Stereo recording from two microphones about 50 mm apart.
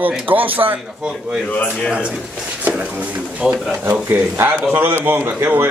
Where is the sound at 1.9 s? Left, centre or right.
Right.